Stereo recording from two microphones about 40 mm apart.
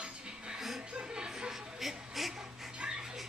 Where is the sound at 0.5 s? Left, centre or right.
Centre.